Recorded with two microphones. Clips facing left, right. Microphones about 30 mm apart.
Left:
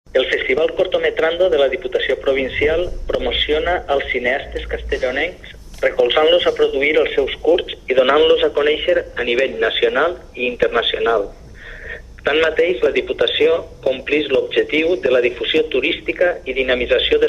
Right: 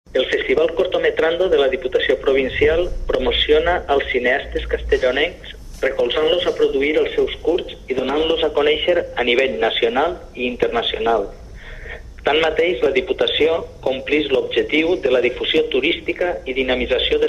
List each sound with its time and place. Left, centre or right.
0.1 s speech: centre
5.0 s a man's voice: centre
5.8 s speech: centre
7.6 s speech: left
8.3 s a man's voice: centre
9.6 s speech: centre